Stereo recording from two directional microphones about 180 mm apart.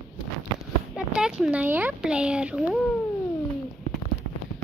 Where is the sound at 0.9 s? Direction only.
5° right (ahead or behind).